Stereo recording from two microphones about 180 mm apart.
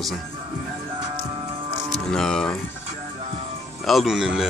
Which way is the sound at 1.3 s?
30° right (ahead or behind).